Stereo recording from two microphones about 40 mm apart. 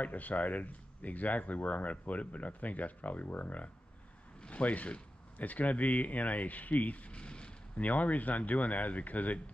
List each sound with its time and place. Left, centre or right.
0.0 s speech: left
7.7 s speech: left